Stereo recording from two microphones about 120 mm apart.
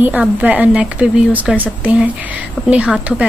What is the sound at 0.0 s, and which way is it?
Speech, 10° right (ahead or behind).